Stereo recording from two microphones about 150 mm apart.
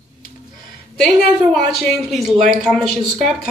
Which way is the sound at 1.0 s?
Centre (ahead or behind).